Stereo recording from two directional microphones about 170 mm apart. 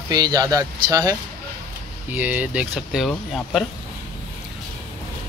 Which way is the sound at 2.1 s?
10° right (ahead or behind).